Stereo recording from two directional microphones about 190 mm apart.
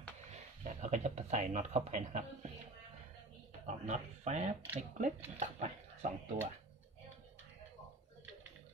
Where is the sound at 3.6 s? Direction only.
40° right (ahead or behind).